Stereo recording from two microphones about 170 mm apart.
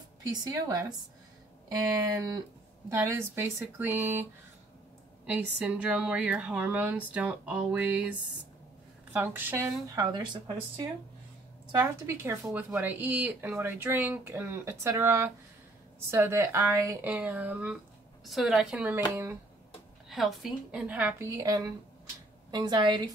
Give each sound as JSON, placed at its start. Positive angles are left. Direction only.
{"t": 0.2, "sound": "a woman's voice", "side_deg": -25}
{"t": 20.1, "sound": "a woman's voice", "side_deg": 0}
{"t": 21.4, "sound": "speech", "side_deg": -20}